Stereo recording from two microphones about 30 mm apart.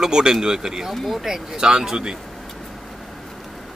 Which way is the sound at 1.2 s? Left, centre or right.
Centre.